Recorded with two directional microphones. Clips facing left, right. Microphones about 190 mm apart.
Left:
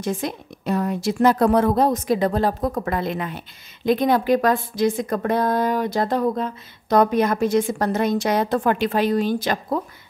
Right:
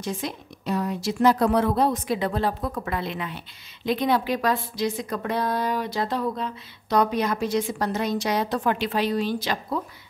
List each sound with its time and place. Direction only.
0.0 s a woman's voice: 50° left (ahead or behind)